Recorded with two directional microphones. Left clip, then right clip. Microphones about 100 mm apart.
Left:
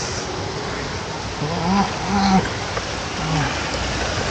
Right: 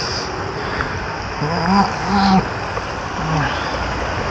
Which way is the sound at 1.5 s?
5° left (ahead or behind).